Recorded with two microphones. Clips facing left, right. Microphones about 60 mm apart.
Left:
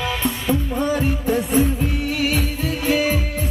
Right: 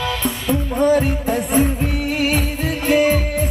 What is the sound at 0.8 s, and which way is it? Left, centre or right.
Music, right.